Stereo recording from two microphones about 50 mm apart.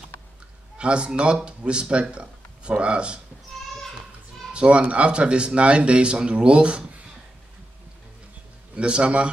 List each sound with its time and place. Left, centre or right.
0.7 s speech: centre
4.5 s speech: right
8.7 s speech: right